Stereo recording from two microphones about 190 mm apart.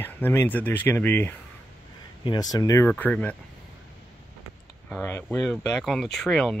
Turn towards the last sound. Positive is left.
turn(degrees=5)  # may be behind; listen again after turning